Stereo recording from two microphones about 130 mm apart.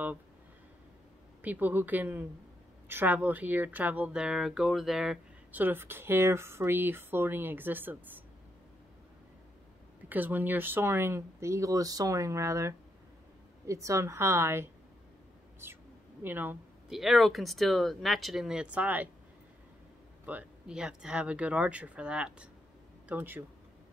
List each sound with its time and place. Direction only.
1.4 s speech: 15° right (ahead or behind)
5.6 s speech: 15° right (ahead or behind)
10.0 s speech: 15° right (ahead or behind)
15.6 s a sound: 15° right (ahead or behind)
16.9 s speech: centre (ahead or behind)
20.2 s speech: 10° right (ahead or behind)